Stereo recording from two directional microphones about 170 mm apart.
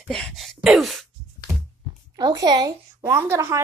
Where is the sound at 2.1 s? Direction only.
25° right (ahead or behind).